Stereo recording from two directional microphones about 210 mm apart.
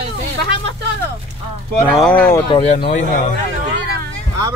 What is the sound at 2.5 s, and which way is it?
Speech, 30° left (ahead or behind).